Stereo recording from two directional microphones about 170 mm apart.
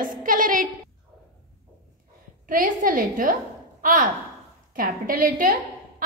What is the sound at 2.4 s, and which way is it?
A woman's voice, 55° right (ahead or behind).